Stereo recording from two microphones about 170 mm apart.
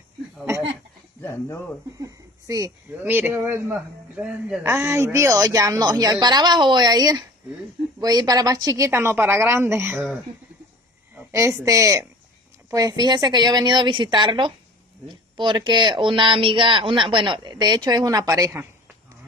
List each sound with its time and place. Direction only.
1.2 s speech: 15° left (ahead or behind)
2.0 s a woman's voice: 20° right (ahead or behind)
11.1 s a woman's voice: 15° right (ahead or behind)